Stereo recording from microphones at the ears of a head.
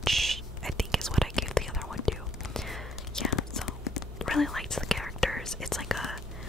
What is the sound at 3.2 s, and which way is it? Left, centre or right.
Whispering, left.